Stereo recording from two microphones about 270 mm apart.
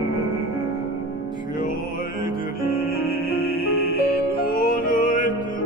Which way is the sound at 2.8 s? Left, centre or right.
Left.